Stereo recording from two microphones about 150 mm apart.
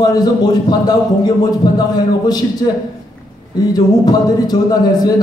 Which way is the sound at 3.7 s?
25° left (ahead or behind).